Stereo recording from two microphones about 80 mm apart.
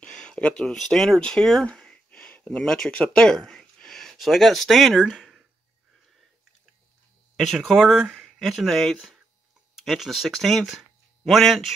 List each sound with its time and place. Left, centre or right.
0.0 s a sound: centre
2.6 s speech: centre
7.3 s speech: centre